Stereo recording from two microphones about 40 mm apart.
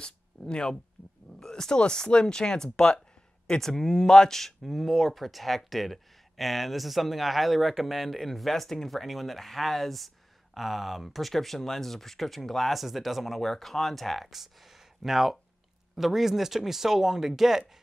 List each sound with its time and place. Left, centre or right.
0.5 s speech: centre